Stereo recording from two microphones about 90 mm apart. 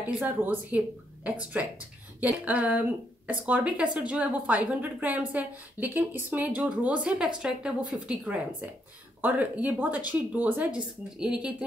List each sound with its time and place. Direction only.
0.0 s a woman's voice: 20° right (ahead or behind); by 8.3 s 5° right (ahead or behind)
9.2 s speech: 20° right (ahead or behind)